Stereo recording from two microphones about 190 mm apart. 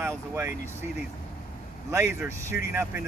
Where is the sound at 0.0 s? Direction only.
15° right (ahead or behind).